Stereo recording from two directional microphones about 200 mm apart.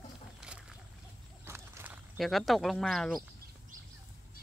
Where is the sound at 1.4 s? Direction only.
15° right (ahead or behind).